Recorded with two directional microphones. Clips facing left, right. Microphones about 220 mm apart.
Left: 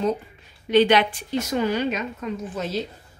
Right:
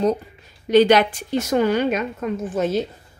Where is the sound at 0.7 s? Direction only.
40° right (ahead or behind).